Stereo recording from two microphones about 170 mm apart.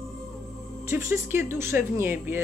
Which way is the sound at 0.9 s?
15° right (ahead or behind).